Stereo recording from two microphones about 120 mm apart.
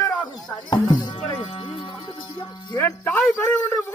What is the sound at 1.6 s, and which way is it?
Music, 45° left (ahead or behind).